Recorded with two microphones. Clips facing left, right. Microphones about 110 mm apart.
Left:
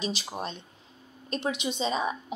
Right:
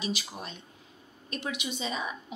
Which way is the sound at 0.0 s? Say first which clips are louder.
Left 3 dB; 30° left (ahead or behind).